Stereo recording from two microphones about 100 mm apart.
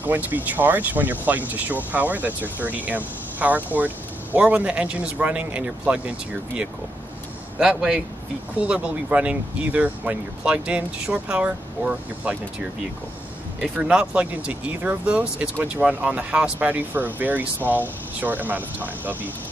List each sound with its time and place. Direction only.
0.0 s speech: 20° right (ahead or behind)
13.6 s speech: 10° right (ahead or behind)